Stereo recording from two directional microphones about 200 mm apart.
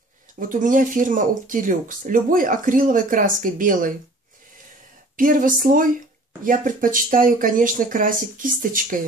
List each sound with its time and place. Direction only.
0.4 s speech: 40° right (ahead or behind)
5.1 s speech: 45° right (ahead or behind)